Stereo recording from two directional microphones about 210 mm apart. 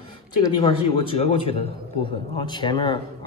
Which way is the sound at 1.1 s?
25° left (ahead or behind).